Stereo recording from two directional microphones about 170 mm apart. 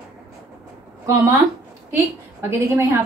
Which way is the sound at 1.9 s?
15° right (ahead or behind).